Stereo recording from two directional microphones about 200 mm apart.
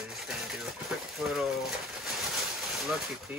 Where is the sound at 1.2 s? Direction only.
Centre (ahead or behind).